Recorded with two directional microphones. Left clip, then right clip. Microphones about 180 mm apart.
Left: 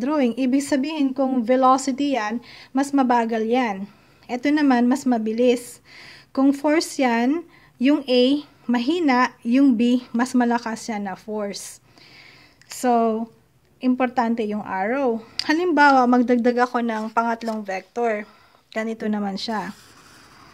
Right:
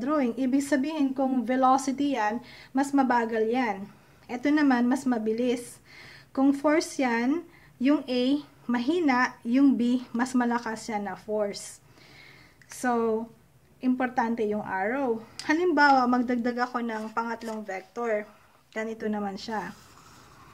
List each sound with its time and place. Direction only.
0.0 s speech: 40° left (ahead or behind)
12.2 s a sound: 40° left (ahead or behind)
13.7 s speech: 40° left (ahead or behind)